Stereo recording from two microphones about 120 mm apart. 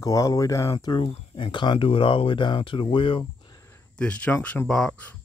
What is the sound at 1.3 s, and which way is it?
Speech, 45° left (ahead or behind).